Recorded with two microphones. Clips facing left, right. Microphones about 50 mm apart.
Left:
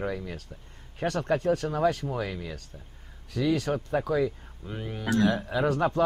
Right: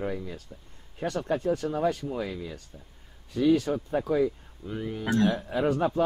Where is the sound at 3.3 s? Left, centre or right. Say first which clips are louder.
Right 3 dB; left.